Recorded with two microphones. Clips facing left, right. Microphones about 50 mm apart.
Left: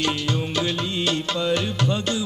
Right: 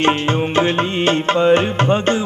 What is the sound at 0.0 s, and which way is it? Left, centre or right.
Music, right.